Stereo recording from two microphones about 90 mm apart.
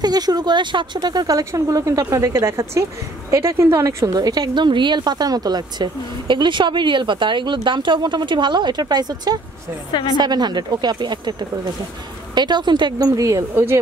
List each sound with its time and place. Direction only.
0.0 s speech: 50° right (ahead or behind)
1.4 s a woman's voice: 30° right (ahead or behind)
4.6 s a woman's voice: 60° right (ahead or behind)
13.0 s a woman's voice: 40° right (ahead or behind)